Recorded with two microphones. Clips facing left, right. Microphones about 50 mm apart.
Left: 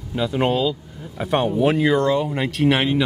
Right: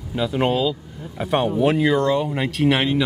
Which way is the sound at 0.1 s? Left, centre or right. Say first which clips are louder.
Even; centre.